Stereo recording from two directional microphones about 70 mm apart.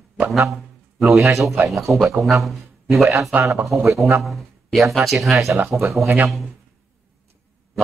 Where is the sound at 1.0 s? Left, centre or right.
Right.